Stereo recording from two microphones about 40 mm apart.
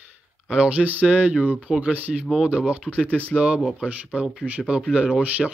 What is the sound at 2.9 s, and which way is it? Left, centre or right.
Speech, right.